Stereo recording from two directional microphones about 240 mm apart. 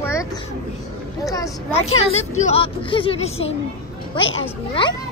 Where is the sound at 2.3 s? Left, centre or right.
Left.